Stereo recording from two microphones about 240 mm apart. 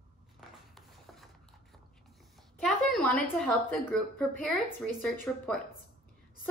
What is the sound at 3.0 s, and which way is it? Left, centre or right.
A woman's voice, centre.